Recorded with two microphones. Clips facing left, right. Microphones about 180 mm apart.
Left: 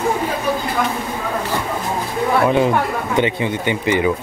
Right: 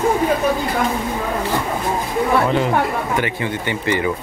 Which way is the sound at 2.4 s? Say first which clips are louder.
Left 2 dB; 15° left (ahead or behind).